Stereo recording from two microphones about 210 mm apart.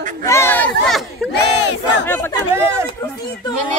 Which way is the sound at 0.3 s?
10° left (ahead or behind).